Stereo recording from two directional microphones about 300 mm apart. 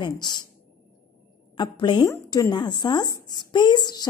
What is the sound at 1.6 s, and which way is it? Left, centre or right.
A woman's voice, centre.